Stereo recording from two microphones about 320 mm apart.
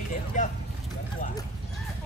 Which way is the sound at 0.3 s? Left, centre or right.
Left.